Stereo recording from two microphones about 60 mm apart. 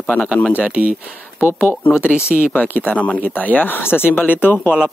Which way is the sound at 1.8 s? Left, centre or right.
Left.